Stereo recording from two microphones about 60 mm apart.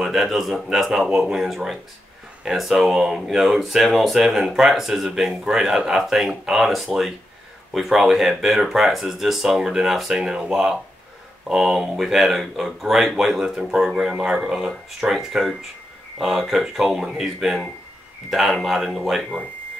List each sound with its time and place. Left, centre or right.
0.0 s speech: centre